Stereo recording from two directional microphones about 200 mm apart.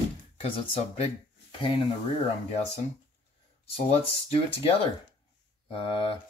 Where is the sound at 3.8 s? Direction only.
30° left (ahead or behind).